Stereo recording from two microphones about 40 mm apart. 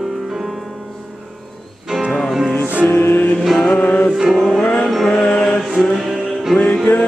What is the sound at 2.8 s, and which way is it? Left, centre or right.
Music, left.